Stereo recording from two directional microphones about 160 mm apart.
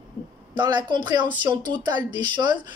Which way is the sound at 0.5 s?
30° right (ahead or behind).